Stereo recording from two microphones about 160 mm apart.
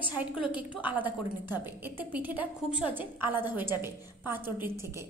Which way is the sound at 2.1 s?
10° right (ahead or behind).